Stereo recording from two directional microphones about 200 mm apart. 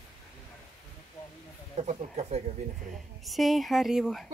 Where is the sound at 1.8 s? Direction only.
35° right (ahead or behind).